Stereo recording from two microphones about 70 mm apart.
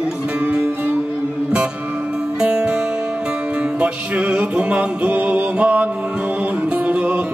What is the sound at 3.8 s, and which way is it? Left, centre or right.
Music, centre.